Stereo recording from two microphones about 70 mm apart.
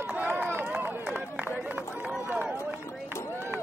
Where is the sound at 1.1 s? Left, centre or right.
Right.